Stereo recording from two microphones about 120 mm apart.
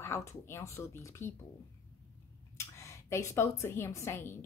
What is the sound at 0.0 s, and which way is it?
A woman's voice, 25° left (ahead or behind).